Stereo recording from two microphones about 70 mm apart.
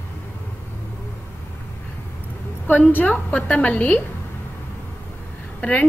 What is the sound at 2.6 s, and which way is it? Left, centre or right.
A woman's voice, left.